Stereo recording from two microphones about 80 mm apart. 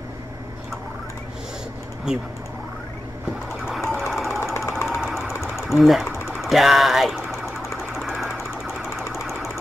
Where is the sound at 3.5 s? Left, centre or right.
Centre.